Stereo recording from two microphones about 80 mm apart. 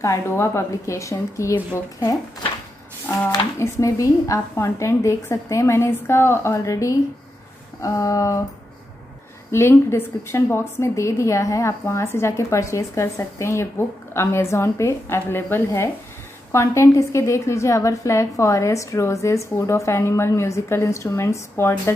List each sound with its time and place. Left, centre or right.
0.0 s a woman's voice: left
3.5 s a woman's voice: left
7.8 s a sound: left
9.5 s a woman's voice: left